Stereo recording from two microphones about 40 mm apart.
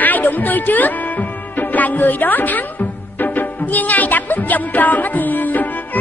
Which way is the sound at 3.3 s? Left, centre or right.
Left.